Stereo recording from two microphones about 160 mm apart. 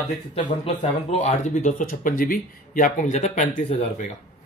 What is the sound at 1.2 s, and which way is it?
Speech, 50° left (ahead or behind).